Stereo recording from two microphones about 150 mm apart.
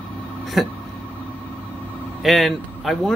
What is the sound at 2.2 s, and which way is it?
Speech, centre (ahead or behind).